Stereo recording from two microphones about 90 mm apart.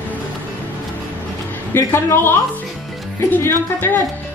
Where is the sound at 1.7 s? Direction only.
25° left (ahead or behind).